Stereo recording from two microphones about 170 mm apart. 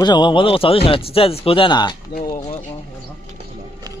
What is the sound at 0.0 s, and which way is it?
Speech, 25° left (ahead or behind).